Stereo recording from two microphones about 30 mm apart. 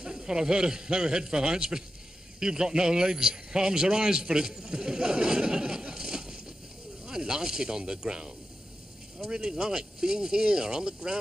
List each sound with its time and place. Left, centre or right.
0.0 s speech: right
9.3 s speech: right